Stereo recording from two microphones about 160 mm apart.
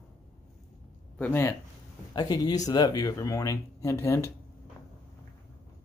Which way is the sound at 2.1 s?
25° left (ahead or behind).